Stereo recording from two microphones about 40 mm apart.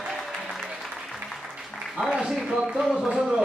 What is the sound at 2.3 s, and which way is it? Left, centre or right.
Speech, centre.